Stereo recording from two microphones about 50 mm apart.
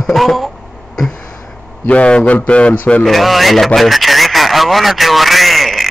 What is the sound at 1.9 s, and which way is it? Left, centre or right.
A man's voice, left.